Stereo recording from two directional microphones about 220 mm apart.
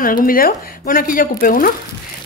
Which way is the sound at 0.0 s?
40° left (ahead or behind).